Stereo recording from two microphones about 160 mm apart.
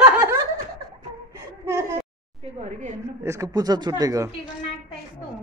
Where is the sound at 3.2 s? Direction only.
20° right (ahead or behind).